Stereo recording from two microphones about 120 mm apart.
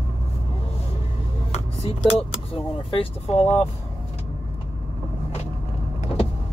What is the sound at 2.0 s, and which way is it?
Speech, 55° left (ahead or behind).